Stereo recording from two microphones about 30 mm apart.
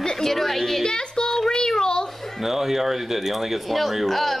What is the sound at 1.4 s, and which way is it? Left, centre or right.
Child singing, centre.